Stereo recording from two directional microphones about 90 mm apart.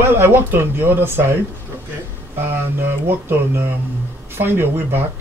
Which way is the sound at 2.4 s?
25° right (ahead or behind).